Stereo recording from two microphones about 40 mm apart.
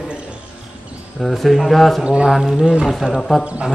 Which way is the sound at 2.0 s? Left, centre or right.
Right.